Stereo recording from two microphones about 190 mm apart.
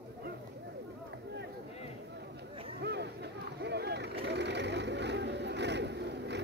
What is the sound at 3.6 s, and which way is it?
Boat, 60° right (ahead or behind).